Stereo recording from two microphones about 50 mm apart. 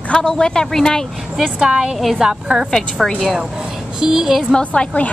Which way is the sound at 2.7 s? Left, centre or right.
Centre.